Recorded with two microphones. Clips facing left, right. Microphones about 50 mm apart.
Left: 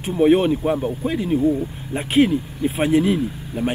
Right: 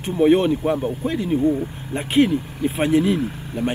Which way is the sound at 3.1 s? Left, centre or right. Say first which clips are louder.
Even; right.